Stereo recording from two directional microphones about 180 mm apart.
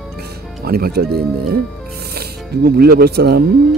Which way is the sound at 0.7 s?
60° right (ahead or behind).